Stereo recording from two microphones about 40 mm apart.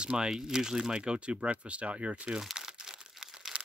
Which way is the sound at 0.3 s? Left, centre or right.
Centre.